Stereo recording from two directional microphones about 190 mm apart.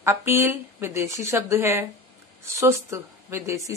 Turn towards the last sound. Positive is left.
turn(degrees=-15)  # may be behind; listen again after turning